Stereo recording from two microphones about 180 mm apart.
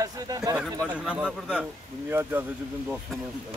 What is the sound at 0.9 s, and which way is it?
Speech, 5° right (ahead or behind).